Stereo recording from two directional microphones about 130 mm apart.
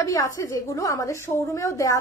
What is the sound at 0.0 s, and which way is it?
A woman's voice, 25° left (ahead or behind).